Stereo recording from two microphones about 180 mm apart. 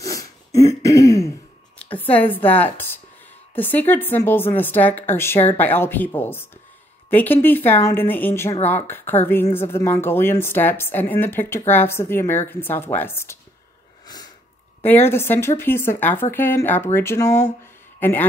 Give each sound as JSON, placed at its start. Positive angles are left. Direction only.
{"t": 0.0, "sound": "throat clearing", "side_deg": 20}
{"t": 1.8, "sound": "a woman's voice", "side_deg": 10}
{"t": 14.0, "sound": "a sound", "side_deg": 20}
{"t": 14.8, "sound": "speech", "side_deg": 10}